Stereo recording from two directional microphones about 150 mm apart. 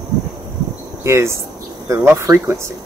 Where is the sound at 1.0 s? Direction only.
20° right (ahead or behind).